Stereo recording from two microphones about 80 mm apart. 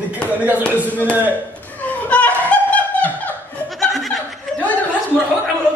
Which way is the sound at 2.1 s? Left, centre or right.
Centre.